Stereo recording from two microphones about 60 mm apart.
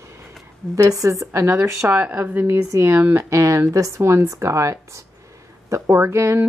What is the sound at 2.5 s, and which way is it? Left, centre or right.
A woman's voice, right.